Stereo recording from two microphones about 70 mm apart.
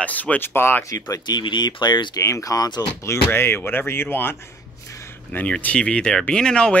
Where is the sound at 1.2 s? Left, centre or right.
Left.